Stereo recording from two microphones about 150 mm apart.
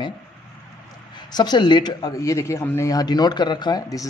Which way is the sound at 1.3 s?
30° left (ahead or behind).